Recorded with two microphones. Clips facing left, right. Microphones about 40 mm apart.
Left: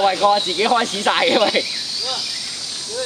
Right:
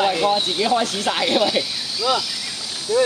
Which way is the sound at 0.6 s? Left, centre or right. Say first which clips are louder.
Left 2 dB; left.